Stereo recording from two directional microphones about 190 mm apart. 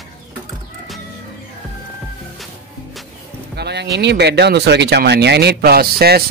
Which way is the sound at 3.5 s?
60° right (ahead or behind).